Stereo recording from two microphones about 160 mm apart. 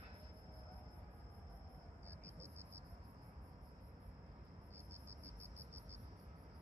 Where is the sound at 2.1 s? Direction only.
45° right (ahead or behind).